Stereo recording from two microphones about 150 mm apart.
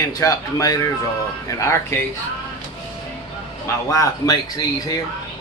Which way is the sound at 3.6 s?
20° left (ahead or behind).